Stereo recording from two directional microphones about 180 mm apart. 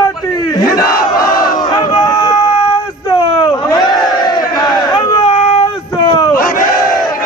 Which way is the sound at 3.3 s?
25° left (ahead or behind).